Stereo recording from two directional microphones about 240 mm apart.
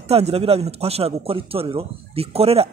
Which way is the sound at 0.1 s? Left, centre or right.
Right.